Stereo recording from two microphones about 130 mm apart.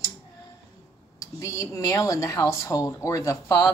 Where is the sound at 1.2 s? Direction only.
25° left (ahead or behind).